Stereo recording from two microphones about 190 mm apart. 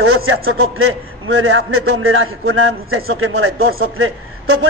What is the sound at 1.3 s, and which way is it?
A man's voice, 90° right.